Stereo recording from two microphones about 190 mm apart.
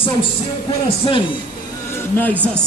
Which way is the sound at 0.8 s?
25° left (ahead or behind).